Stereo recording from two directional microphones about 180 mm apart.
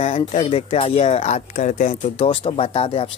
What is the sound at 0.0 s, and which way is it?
Speech, 40° left (ahead or behind).